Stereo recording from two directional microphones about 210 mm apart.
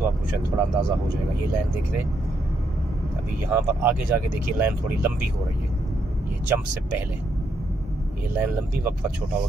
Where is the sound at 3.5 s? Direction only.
10° right (ahead or behind).